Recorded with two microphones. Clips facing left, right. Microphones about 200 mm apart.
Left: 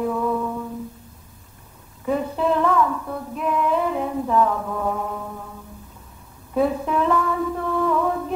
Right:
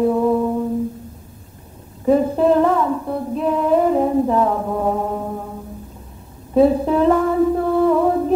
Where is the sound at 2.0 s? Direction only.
35° right (ahead or behind).